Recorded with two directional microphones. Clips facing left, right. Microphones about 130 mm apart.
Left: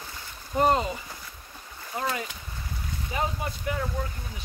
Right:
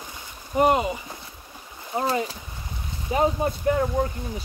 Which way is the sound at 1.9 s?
30° right (ahead or behind).